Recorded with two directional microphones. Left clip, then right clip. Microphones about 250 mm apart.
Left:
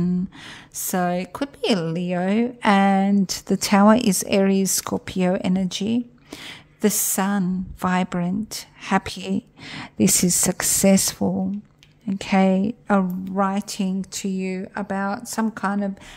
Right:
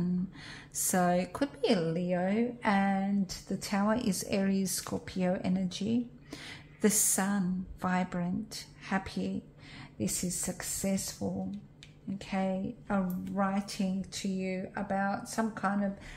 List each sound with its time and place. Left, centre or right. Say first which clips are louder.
0.0 s a woman's voice: left 10 dB; left